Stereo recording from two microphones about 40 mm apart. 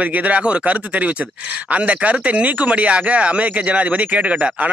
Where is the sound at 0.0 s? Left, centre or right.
Right.